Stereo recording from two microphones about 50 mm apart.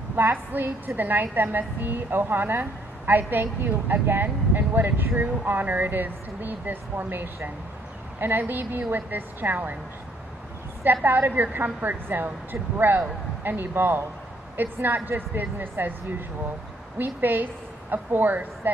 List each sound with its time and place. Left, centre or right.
0.1 s a woman's voice: right
11.1 s a woman's voice: right
17.0 s a woman's voice: right